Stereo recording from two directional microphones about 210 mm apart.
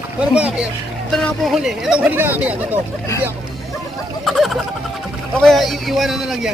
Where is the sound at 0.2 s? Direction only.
5° right (ahead or behind).